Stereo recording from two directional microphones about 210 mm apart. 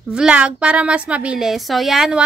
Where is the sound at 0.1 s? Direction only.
5° right (ahead or behind).